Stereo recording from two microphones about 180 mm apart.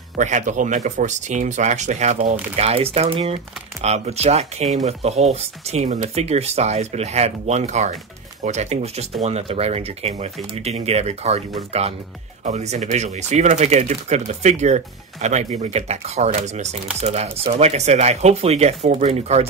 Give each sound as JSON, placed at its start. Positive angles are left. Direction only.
{"t": 0.2, "sound": "speech", "side_deg": -40}